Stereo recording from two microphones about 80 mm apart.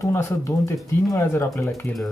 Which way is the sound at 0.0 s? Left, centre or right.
Left.